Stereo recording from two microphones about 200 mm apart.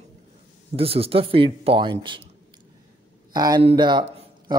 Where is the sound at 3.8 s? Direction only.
25° right (ahead or behind).